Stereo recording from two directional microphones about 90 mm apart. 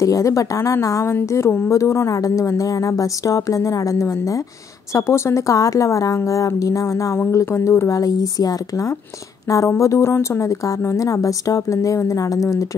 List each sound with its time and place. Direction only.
0.0 s speech: 35° left (ahead or behind)